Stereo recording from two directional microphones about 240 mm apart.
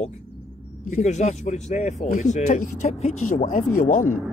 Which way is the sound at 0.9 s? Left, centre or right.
Left.